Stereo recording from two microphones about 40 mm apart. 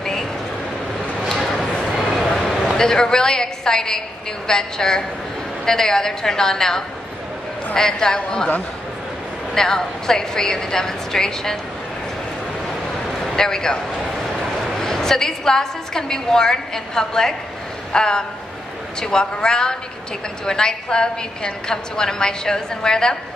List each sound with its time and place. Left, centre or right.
1.3 s a sound: centre
2.8 s a woman's voice: centre
9.5 s a woman's voice: centre
13.4 s a woman's voice: centre
14.1 s a sound: centre
14.8 s a woman's voice: centre